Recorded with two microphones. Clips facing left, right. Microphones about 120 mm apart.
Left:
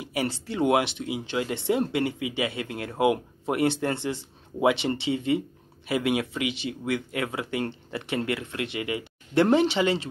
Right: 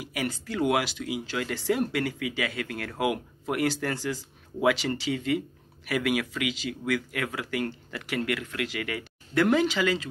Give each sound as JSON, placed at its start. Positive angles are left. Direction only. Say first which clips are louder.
{"t": 0.0, "sound": "speech", "louder": "left 3 dB", "side_deg": 30}